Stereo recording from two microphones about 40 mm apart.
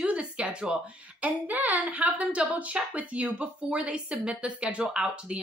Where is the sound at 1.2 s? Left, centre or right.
Right.